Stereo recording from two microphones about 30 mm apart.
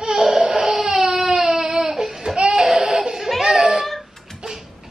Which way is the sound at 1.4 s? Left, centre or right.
Centre.